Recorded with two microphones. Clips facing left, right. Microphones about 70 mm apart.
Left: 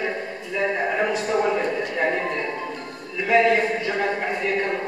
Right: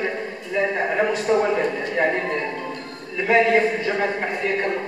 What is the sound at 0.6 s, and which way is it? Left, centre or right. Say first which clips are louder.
Speech: right 2 dB; centre.